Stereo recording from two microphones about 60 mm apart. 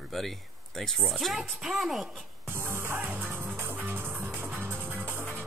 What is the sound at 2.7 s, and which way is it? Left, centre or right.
Music, right.